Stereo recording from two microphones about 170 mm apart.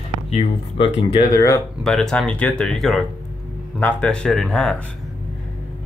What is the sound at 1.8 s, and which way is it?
Speech, centre (ahead or behind).